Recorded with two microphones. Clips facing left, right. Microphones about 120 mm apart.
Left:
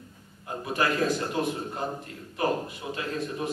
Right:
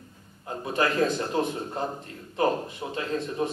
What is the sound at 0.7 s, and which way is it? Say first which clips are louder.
A man's voice: right 2 dB; 25° right (ahead or behind).